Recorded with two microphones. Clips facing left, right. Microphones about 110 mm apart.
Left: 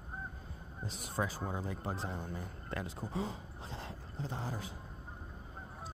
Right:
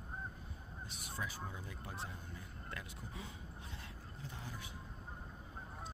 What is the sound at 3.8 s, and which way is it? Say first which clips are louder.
Vehicle: left 8 dB; 35° left (ahead or behind).